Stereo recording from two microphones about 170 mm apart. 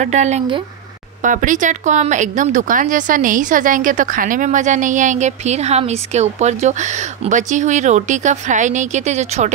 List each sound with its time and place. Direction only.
0.0 s speech: 45° right (ahead or behind)